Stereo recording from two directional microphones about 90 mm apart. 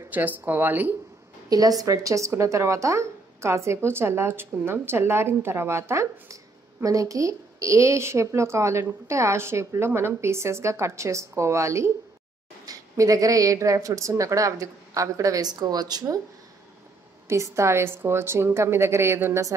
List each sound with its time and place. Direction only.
0.1 s a woman's voice: 20° right (ahead or behind)
1.5 s speech: 45° right (ahead or behind)
17.3 s a woman's voice: 30° right (ahead or behind)